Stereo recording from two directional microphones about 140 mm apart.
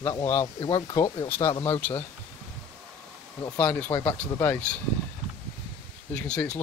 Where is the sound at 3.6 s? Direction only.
10° left (ahead or behind).